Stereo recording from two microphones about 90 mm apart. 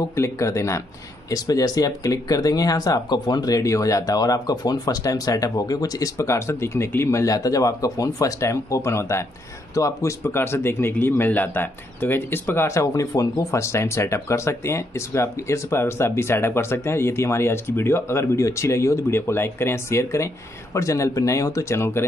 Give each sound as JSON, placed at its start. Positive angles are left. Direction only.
{"t": 0.1, "sound": "speech", "side_deg": 30}
{"t": 1.3, "sound": "a man's voice", "side_deg": 45}